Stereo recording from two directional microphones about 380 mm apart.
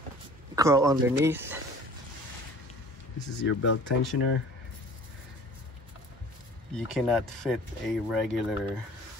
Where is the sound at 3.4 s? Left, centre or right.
Left.